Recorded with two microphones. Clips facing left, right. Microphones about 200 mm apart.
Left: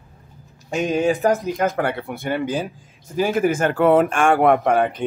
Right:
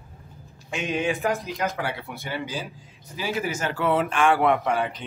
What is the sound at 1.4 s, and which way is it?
Speech, 50° left (ahead or behind).